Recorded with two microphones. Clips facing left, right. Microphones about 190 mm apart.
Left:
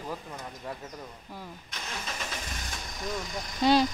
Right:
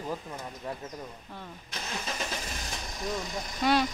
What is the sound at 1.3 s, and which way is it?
Speech, 10° left (ahead or behind).